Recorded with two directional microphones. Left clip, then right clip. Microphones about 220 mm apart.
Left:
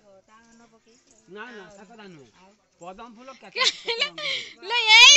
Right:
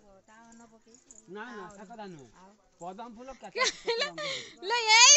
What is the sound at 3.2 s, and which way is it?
Speech, 20° right (ahead or behind).